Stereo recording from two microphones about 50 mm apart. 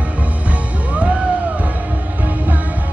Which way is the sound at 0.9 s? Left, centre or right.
Right.